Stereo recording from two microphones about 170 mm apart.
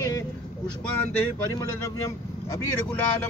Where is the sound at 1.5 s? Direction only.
20° left (ahead or behind).